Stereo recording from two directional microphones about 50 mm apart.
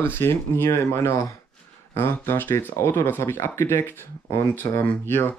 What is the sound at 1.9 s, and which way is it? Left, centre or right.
Speech, left.